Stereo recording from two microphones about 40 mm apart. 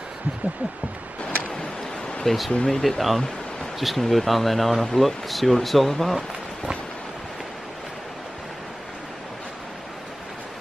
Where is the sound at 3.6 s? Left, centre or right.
Centre.